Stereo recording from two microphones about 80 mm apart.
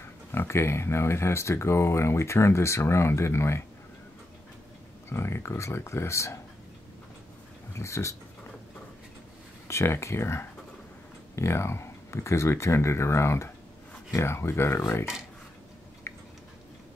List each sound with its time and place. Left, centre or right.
0.3 s speech: left
5.1 s speech: left
7.7 s speech: left
9.7 s speech: left
16.1 s tick-tock: left